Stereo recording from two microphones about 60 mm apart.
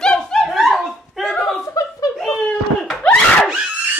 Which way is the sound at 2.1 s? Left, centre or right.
Centre.